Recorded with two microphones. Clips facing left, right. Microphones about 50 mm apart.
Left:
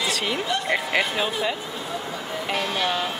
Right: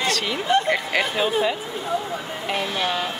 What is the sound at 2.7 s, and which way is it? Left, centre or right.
Speech, centre.